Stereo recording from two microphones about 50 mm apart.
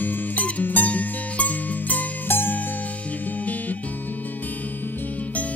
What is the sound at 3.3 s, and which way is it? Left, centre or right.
Music, left.